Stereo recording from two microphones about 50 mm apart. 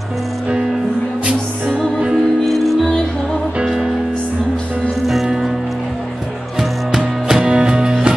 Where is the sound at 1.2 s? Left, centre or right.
Centre.